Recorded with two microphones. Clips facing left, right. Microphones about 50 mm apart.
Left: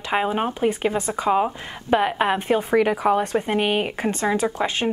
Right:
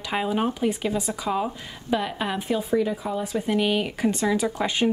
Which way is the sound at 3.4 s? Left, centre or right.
Left.